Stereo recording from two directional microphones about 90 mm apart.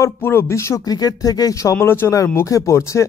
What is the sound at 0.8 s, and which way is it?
Speech, 45° left (ahead or behind).